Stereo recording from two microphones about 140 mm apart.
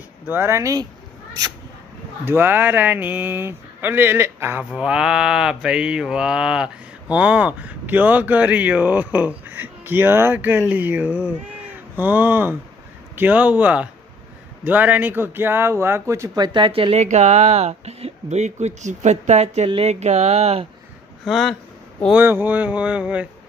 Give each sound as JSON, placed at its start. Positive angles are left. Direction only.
{"t": 0.3, "sound": "speech", "side_deg": -15}
{"t": 2.2, "sound": "speech", "side_deg": -15}
{"t": 16.9, "sound": "speech", "side_deg": -55}
{"t": 21.3, "sound": "speech", "side_deg": 0}
{"t": 22.1, "sound": "speech", "side_deg": -15}